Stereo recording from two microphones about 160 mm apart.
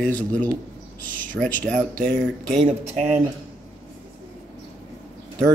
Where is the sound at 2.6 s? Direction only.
40° right (ahead or behind).